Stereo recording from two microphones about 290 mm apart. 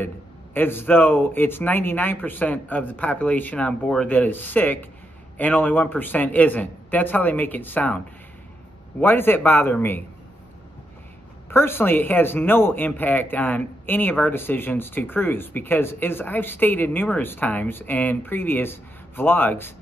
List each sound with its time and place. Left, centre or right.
0.6 s a man's voice: centre
9.0 s speech: centre
11.5 s speech: centre